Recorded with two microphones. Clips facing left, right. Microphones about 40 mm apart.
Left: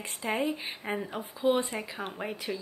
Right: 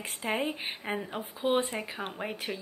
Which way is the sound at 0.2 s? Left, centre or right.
Right.